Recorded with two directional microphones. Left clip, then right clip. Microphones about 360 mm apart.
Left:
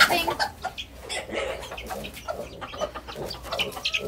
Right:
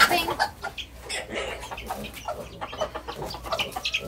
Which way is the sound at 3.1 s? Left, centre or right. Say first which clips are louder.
Right 2 dB; centre.